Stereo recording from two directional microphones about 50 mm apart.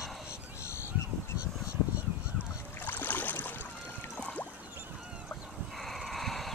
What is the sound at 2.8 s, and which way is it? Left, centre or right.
Boat, left.